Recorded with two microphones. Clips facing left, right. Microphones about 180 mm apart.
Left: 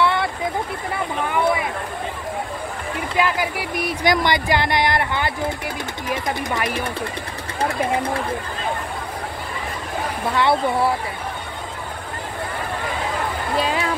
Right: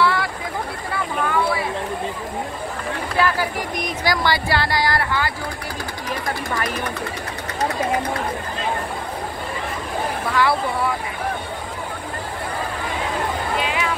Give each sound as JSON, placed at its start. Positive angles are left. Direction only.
{"t": 0.0, "sound": "a sound", "side_deg": 25}
{"t": 1.3, "sound": "chatter", "side_deg": 20}
{"t": 3.2, "sound": "speech", "side_deg": 15}
{"t": 4.0, "sound": "speech", "side_deg": 20}
{"t": 10.3, "sound": "speech", "side_deg": 25}
{"t": 13.6, "sound": "music", "side_deg": 35}